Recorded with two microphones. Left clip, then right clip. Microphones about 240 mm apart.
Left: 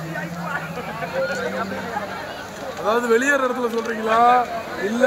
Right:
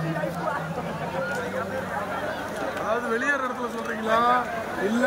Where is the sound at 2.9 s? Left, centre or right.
Left.